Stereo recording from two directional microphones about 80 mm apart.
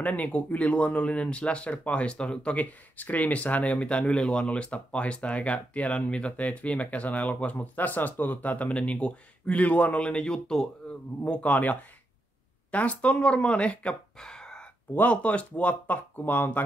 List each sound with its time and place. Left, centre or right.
0.0 s speech: centre